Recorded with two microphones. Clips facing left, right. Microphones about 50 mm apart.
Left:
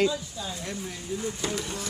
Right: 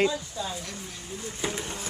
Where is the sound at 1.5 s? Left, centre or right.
Right.